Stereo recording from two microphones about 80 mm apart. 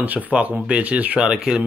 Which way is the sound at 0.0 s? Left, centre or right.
Centre.